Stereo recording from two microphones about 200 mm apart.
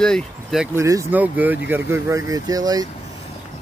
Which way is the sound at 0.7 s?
15° right (ahead or behind).